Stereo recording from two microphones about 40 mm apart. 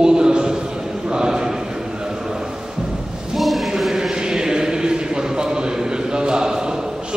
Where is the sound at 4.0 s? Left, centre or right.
Centre.